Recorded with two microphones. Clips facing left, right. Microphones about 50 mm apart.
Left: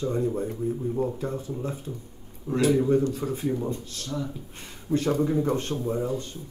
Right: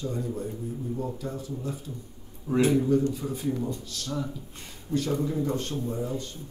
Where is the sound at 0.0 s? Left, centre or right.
Left.